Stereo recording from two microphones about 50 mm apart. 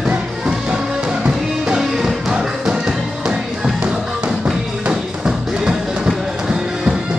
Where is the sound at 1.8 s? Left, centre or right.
Centre.